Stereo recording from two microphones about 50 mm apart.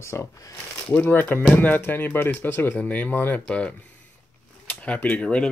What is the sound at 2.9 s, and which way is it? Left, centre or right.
Speech, left.